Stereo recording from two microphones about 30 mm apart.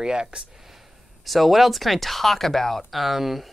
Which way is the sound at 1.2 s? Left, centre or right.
Centre.